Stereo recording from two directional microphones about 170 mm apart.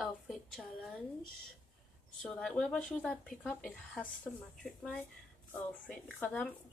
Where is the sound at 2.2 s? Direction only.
5° left (ahead or behind).